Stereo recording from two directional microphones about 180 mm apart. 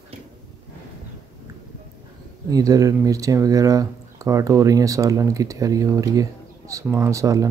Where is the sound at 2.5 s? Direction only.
20° right (ahead or behind).